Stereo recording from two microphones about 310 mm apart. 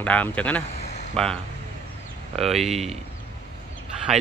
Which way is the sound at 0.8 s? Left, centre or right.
Left.